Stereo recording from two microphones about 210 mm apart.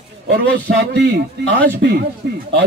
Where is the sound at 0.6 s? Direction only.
50° right (ahead or behind).